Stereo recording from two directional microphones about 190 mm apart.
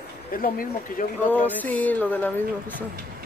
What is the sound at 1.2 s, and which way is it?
Speech, 10° left (ahead or behind).